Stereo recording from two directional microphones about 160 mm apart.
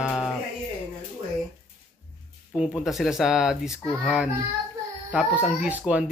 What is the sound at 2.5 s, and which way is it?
Speech, 5° right (ahead or behind).